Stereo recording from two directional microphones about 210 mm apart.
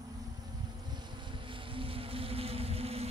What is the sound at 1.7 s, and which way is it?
Boat, 25° right (ahead or behind).